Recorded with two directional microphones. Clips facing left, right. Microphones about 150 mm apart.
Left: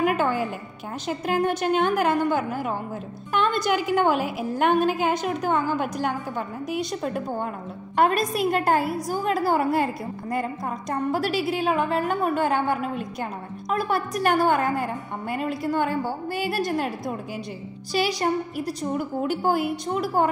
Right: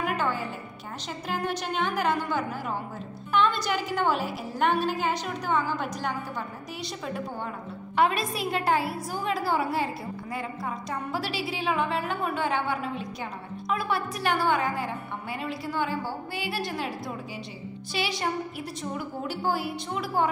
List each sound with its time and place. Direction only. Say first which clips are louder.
0.0 s a sound: left 6 dB; 50° left (ahead or behind)
1.0 s a woman's voice: left 8 dB; 50° left (ahead or behind)
10.9 s a woman's voice: left 9 dB; 45° left (ahead or behind)
19.2 s a woman's voice: left 5 dB; 50° left (ahead or behind)